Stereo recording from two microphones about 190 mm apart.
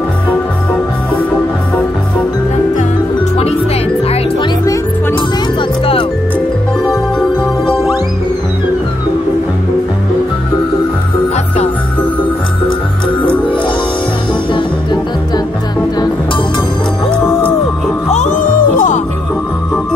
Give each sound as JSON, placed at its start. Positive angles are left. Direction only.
{"t": 5.6, "sound": "music", "side_deg": 30}
{"t": 6.9, "sound": "music", "side_deg": 0}
{"t": 14.5, "sound": "music", "side_deg": 25}
{"t": 17.1, "sound": "music", "side_deg": 10}
{"t": 18.1, "sound": "music", "side_deg": 40}